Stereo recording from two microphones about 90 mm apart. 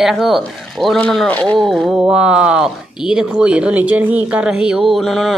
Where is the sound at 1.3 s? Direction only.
15° left (ahead or behind).